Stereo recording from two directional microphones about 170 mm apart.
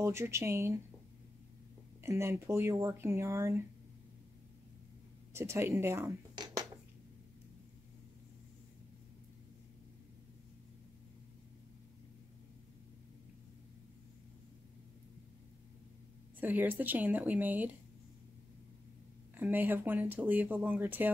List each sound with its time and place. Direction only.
0.0 s speech: 15° right (ahead or behind)
2.0 s speech: 15° right (ahead or behind)
5.3 s speech: 15° right (ahead or behind)
16.3 s speech: 10° right (ahead or behind)
19.3 s speech: 10° right (ahead or behind)